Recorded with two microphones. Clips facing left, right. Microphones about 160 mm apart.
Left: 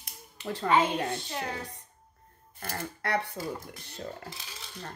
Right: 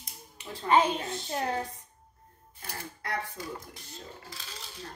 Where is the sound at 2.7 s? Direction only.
70° left (ahead or behind).